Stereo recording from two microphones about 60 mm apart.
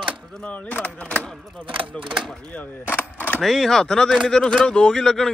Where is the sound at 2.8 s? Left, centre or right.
Left.